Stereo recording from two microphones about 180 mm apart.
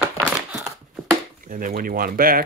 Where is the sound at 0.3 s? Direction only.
5° right (ahead or behind).